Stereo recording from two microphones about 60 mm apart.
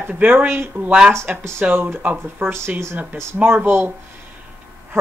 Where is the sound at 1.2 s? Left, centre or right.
Right.